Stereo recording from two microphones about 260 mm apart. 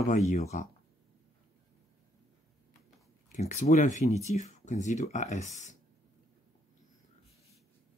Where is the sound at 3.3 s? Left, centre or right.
Left.